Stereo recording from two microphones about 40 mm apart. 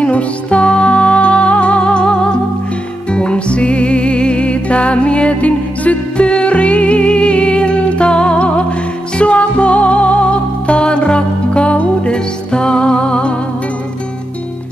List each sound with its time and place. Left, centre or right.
0.0 s music: left